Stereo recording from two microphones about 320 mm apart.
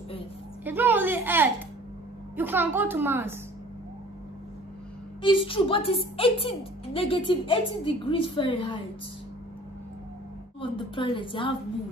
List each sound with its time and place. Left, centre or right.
0.7 s a woman's voice: centre
5.2 s a woman's voice: centre
10.6 s a woman's voice: centre